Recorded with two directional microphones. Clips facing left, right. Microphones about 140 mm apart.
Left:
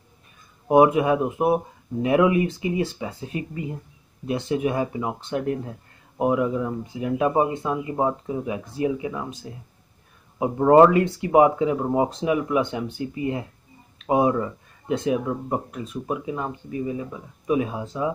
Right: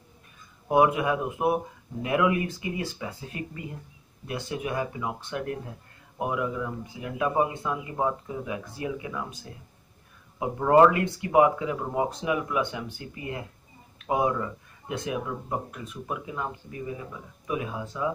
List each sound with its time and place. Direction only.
0.7 s speech: 25° left (ahead or behind)
10.4 s speech: 30° left (ahead or behind)